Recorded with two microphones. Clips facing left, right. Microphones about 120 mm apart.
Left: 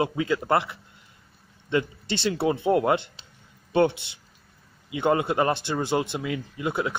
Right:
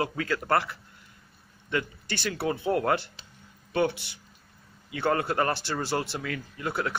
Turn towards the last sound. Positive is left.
turn(degrees=20)  # may be behind; listen again after turning